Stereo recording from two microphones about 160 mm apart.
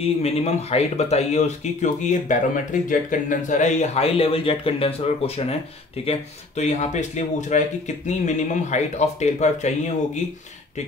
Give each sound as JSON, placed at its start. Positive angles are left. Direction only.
{"t": 0.0, "sound": "speech", "side_deg": 40}